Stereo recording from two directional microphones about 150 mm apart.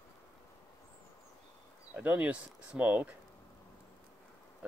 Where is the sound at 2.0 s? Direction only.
10° right (ahead or behind).